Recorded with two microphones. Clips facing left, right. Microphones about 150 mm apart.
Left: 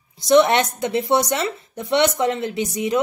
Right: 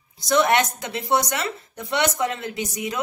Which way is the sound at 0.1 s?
25° left (ahead or behind).